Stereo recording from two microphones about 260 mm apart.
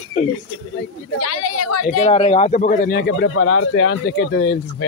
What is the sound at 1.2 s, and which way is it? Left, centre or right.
Speech, left.